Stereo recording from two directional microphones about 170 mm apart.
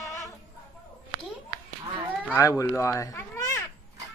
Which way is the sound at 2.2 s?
15° left (ahead or behind).